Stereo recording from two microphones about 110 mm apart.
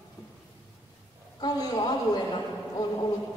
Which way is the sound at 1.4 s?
45° left (ahead or behind).